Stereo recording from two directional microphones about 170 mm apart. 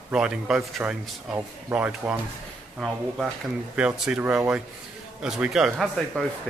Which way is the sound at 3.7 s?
5° right (ahead or behind).